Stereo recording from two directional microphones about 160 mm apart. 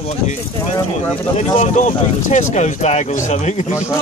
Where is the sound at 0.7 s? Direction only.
15° left (ahead or behind).